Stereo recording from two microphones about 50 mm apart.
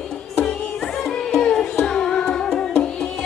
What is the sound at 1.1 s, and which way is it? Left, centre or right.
Music, centre.